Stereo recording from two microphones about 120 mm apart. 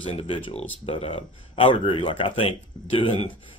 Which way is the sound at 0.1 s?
55° left (ahead or behind).